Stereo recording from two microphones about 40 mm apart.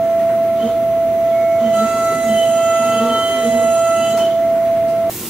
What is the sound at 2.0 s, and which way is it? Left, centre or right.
Music, right.